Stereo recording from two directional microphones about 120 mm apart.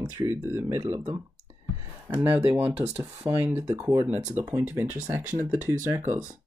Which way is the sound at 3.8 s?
30° right (ahead or behind).